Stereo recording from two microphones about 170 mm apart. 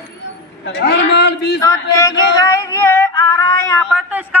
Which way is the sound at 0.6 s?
85° left.